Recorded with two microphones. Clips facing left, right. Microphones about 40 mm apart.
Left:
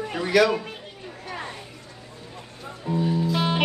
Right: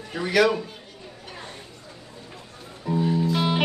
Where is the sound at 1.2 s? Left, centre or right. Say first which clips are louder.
Left 6 dB; left.